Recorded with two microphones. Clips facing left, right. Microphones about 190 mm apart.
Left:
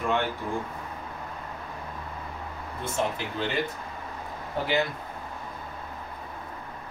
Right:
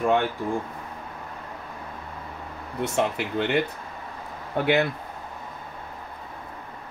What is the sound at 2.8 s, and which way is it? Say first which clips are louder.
Speech: right 5 dB; 70° right (ahead or behind).